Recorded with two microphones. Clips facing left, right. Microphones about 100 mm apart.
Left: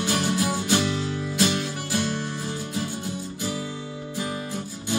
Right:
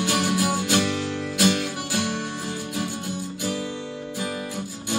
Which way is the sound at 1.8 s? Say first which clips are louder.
Even; 15° right (ahead or behind).